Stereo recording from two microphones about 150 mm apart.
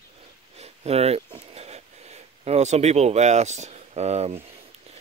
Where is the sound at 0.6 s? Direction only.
45° right (ahead or behind).